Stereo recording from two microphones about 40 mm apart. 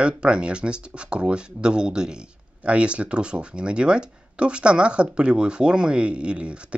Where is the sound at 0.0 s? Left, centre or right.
Right.